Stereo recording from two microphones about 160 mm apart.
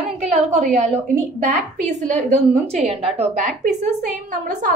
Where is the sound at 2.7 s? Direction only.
40° right (ahead or behind).